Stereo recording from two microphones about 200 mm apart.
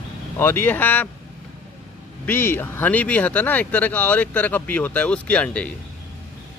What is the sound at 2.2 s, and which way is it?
Speech, 10° left (ahead or behind).